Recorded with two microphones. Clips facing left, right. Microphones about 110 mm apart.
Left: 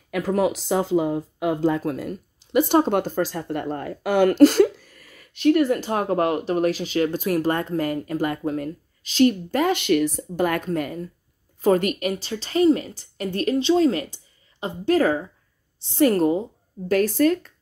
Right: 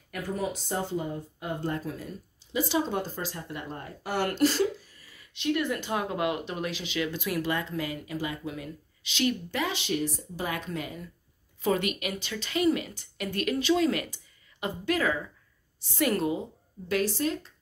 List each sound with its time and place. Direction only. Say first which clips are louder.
0.1 s a woman's voice: left 10 dB; 90° left; by 16.4 s 40° left (ahead or behind)
16.9 s speech: left 9 dB; 55° left (ahead or behind)